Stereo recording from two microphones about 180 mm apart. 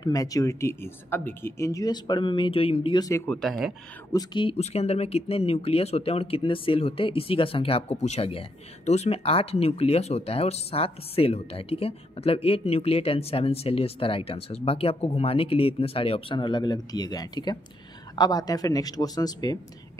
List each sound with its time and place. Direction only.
0.0 s speech: 20° left (ahead or behind)
3.3 s speech: centre (ahead or behind)
4.1 s speech: 25° left (ahead or behind)